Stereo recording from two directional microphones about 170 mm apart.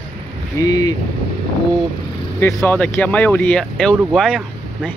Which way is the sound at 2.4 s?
15° left (ahead or behind).